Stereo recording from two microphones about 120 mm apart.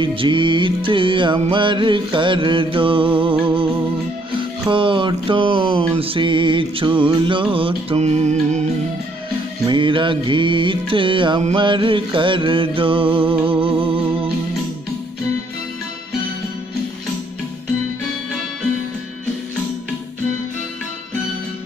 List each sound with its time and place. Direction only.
0.0 s music: 45° right (ahead or behind)
8.0 s music: 70° right (ahead or behind)
9.7 s music: 45° right (ahead or behind)